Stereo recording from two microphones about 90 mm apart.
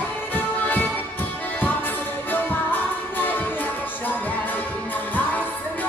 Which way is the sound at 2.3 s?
20° left (ahead or behind).